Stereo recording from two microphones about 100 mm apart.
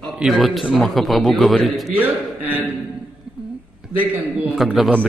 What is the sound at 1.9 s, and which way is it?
Speech, 15° right (ahead or behind).